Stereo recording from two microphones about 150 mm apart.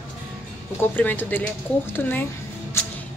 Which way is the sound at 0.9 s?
10° left (ahead or behind).